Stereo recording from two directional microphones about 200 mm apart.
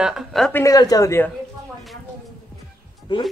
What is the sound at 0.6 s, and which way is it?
Speech, 20° left (ahead or behind).